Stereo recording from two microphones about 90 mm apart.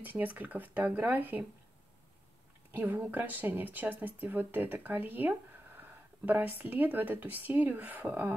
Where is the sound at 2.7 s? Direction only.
25° right (ahead or behind).